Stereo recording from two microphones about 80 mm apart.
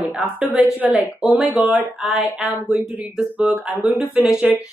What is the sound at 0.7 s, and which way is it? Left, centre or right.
A woman's voice, right.